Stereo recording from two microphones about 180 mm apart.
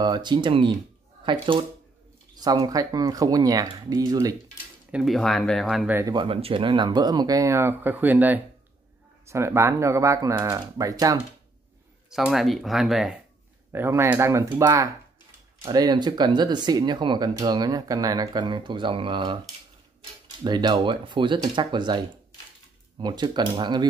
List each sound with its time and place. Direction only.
0.0 s speech: 25° right (ahead or behind)
4.9 s speech: centre (ahead or behind)
5.9 s speech: 20° right (ahead or behind)
12.1 s speech: centre (ahead or behind)
13.7 s speech: 15° right (ahead or behind)
20.4 s speech: 25° right (ahead or behind)